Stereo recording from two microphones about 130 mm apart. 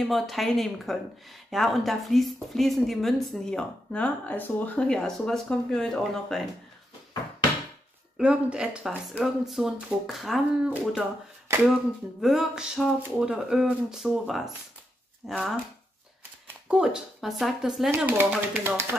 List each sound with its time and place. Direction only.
0.0 s speech: centre (ahead or behind)
8.2 s speech: 10° right (ahead or behind)
16.6 s speech: 5° right (ahead or behind)
17.9 s speech: 15° right (ahead or behind)